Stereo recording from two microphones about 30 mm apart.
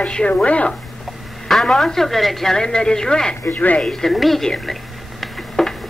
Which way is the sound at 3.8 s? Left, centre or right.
Centre.